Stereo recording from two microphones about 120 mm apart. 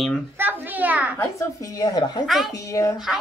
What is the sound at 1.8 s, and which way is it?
Speech, 35° left (ahead or behind).